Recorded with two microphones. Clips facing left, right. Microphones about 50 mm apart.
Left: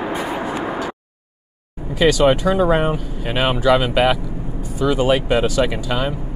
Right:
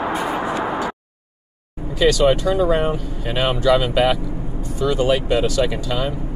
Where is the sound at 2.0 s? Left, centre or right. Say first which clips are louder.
Left 1 dB; left.